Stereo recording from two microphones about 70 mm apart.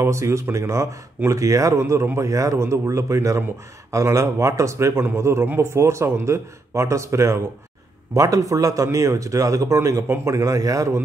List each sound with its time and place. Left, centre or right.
0.0 s speech: right
8.1 s speech: right